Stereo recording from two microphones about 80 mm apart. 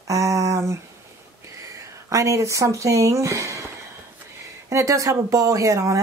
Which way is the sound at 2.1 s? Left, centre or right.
Right.